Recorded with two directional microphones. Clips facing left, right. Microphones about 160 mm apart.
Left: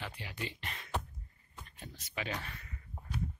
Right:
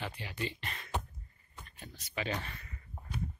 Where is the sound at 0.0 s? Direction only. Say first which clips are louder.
Right 3 dB; 5° left (ahead or behind).